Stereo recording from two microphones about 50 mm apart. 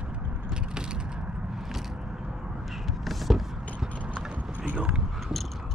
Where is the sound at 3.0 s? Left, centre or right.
Centre.